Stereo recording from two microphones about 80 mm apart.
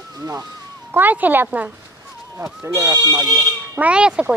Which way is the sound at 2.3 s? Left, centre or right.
Right.